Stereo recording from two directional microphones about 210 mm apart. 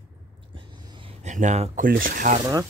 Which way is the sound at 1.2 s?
35° right (ahead or behind).